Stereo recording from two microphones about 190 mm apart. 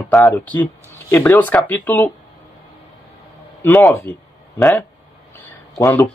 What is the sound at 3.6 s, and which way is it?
Speech, 10° left (ahead or behind).